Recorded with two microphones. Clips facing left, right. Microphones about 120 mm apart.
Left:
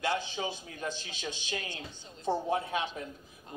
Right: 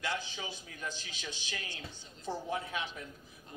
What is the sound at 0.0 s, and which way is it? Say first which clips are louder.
A man's voice: left 6 dB; 20° left (ahead or behind).